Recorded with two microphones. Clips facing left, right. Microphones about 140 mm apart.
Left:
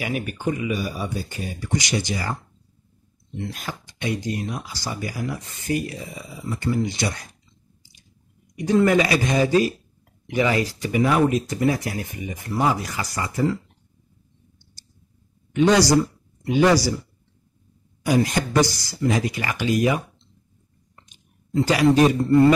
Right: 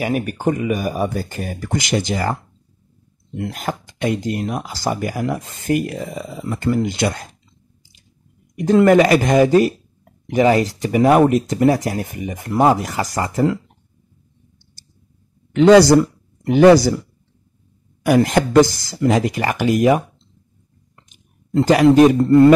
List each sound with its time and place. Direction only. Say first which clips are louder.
0.0 s speech: right 6 dB; 45° right (ahead or behind)
3.3 s speech: right 7 dB; 50° right (ahead or behind)
6.2 s speech: right 4 dB; 80° right; by 7.3 s 55° right (ahead or behind)
8.5 s speech: right 6 dB; 50° right (ahead or behind)
15.5 s speech: right 7 dB; 60° right (ahead or behind)
18.0 s speech: right 6 dB; 55° right (ahead or behind)
21.5 s speech: right 6 dB; 50° right (ahead or behind)